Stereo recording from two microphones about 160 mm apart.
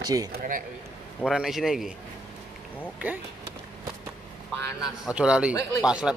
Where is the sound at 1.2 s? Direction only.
Centre (ahead or behind).